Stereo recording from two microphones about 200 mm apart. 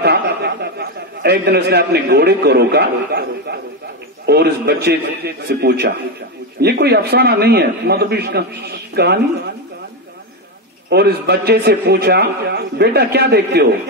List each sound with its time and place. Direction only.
0.0 s a sound: 55° right (ahead or behind)
4.3 s a man's voice: 55° right (ahead or behind)
10.9 s a man's voice: 55° right (ahead or behind)